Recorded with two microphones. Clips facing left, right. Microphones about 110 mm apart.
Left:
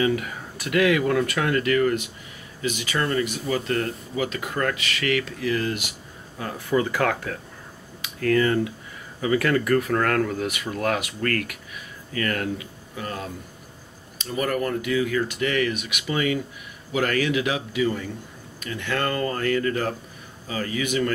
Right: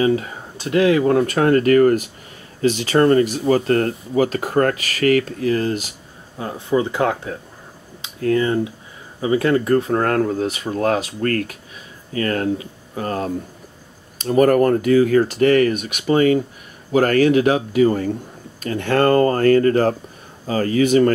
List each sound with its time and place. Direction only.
0.0 s speech: 30° right (ahead or behind)